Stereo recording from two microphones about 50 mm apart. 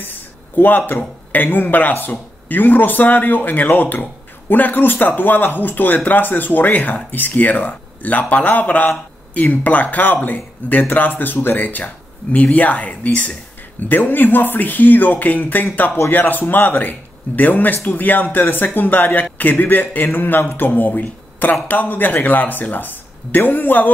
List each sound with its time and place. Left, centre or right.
0.6 s speech: left
13.8 s speech: left